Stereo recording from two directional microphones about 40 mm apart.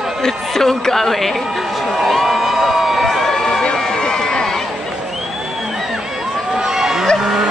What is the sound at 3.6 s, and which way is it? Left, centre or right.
Run, centre.